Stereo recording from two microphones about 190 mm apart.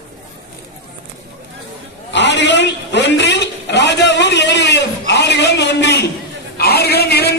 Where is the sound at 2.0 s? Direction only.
65° left (ahead or behind).